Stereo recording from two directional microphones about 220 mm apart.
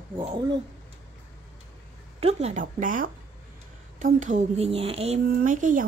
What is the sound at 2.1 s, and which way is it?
A woman's voice, 30° right (ahead or behind).